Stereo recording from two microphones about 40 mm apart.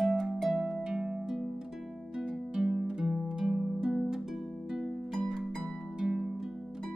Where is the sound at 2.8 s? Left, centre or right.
Centre.